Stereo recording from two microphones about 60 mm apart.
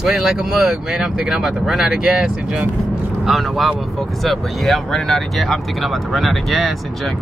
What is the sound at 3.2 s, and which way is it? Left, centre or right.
Speech, centre.